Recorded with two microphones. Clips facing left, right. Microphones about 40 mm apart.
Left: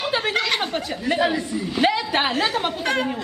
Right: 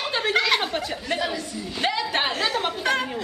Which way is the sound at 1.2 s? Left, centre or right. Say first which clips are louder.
Left 6 dB; left.